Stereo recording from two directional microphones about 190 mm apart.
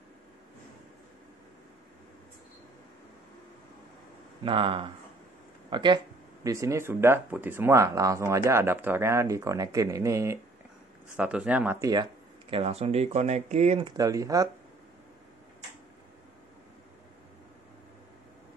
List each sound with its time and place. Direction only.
4.4 s speech: 25° right (ahead or behind)